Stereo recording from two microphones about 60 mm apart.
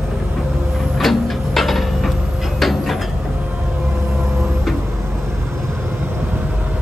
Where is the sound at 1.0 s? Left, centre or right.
Centre.